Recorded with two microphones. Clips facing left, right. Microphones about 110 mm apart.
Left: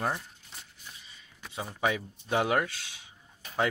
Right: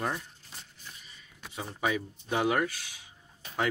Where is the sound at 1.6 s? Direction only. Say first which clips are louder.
Left 1 dB; 25° left (ahead or behind).